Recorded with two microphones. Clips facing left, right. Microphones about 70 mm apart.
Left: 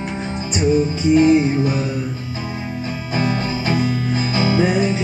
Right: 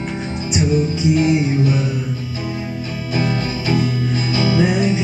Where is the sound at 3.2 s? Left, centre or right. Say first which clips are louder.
Even; left.